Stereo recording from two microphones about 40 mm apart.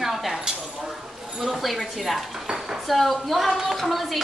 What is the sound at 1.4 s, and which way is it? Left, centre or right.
Speech, centre.